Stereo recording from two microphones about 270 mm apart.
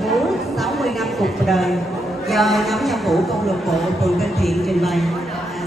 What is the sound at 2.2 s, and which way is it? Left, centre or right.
A woman's voice, centre.